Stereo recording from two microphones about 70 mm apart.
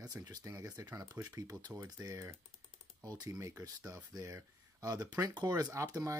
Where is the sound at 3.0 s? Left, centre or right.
Right.